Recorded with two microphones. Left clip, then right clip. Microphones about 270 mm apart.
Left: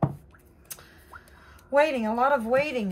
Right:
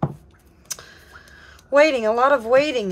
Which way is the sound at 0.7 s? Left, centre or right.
Right.